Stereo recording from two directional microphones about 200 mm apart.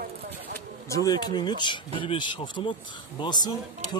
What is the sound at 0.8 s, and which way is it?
Speech, 15° left (ahead or behind).